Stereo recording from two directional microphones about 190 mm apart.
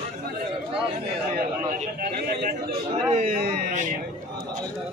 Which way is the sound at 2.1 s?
55° right (ahead or behind).